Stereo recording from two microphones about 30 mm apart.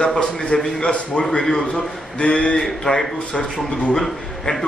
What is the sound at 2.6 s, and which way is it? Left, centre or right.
A man's voice, centre.